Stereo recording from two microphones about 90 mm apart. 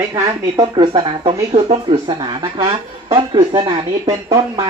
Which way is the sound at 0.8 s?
65° right (ahead or behind).